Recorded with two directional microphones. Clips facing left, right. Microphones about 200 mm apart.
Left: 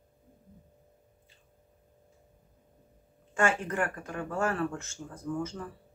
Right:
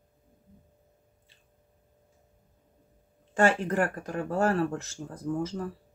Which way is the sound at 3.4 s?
35° right (ahead or behind).